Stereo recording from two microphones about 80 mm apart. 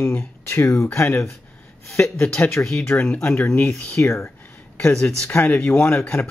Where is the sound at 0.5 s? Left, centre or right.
Left.